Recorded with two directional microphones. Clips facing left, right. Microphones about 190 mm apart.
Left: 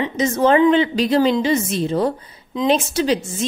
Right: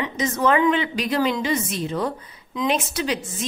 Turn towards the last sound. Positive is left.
turn(degrees=30)  # may be behind; listen again after turning